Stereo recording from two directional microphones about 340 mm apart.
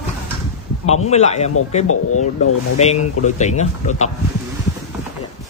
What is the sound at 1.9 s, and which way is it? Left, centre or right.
Speech, left.